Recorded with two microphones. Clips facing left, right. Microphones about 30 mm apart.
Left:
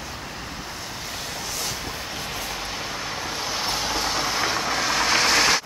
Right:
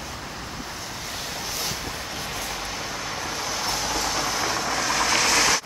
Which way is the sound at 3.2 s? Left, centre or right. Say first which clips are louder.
Left 1 dB; centre.